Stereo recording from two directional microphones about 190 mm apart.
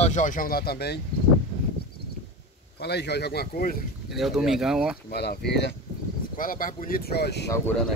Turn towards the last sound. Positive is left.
turn(degrees=15)  # may be behind; listen again after turning